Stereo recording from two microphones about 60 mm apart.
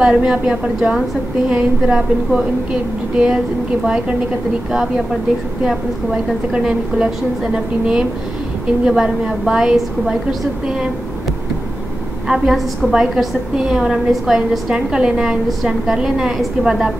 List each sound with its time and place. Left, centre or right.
0.0 s a woman's voice: centre
5.7 s a woman's voice: centre
12.3 s a woman's voice: centre